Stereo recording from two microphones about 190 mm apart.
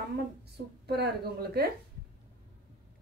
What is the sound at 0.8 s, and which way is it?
Speech, 60° right (ahead or behind).